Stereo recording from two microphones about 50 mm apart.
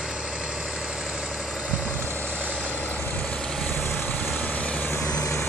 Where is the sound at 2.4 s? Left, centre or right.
Right.